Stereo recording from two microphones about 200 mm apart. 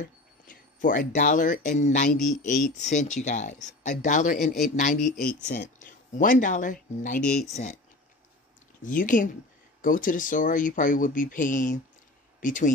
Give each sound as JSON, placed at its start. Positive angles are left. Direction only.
{"t": 0.0, "sound": "speech", "side_deg": 40}
{"t": 5.2, "sound": "speech", "side_deg": 5}
{"t": 5.8, "sound": "speech", "side_deg": 40}
{"t": 8.8, "sound": "speech", "side_deg": 40}